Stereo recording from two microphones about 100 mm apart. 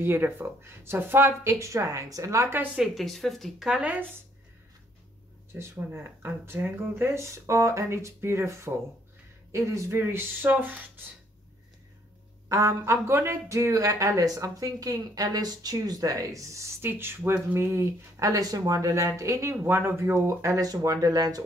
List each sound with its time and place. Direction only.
0.0 s speech: 20° right (ahead or behind)
2.7 s speech: 5° right (ahead or behind)
5.5 s speech: 20° right (ahead or behind)
12.4 s speech: 30° right (ahead or behind)